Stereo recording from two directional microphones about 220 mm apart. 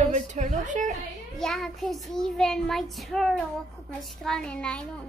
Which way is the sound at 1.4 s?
Centre (ahead or behind).